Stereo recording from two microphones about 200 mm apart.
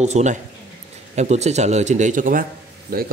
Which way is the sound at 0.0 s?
35° right (ahead or behind).